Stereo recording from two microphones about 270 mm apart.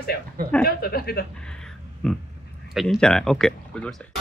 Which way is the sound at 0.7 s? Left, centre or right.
Left.